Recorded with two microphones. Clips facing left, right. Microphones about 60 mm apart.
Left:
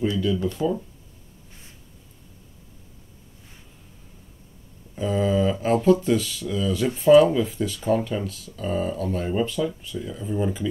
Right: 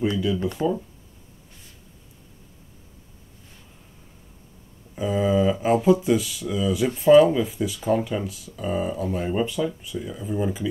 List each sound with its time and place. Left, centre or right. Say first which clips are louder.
0.4 s speech: even; right
4.9 s speech: right 1 dB; centre